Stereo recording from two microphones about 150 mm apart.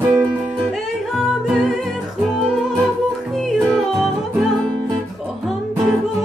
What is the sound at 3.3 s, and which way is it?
Yodeling, centre (ahead or behind).